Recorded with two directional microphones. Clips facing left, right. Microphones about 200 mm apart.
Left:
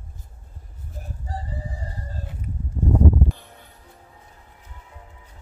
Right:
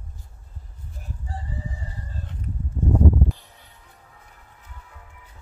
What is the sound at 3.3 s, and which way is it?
Music, 55° left (ahead or behind).